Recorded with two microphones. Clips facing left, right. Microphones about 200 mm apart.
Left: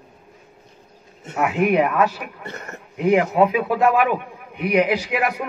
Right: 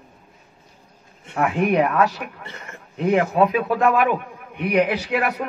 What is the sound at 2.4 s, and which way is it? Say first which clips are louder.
Speech: left 5 dB; 45° left (ahead or behind).